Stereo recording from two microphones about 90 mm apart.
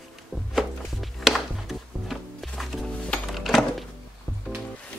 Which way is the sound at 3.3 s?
Centre (ahead or behind).